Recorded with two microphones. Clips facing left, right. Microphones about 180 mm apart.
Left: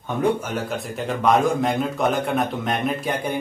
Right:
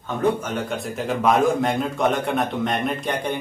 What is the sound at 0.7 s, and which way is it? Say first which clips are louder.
Speech: right 1 dB; centre (ahead or behind).